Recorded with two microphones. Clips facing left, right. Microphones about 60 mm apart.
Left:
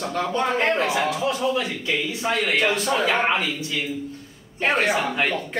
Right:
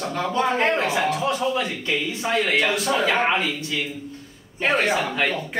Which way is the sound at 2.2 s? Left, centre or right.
Centre.